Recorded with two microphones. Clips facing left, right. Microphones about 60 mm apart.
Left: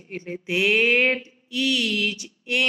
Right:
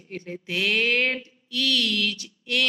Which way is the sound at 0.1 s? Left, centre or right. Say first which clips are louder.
Left 4 dB; centre.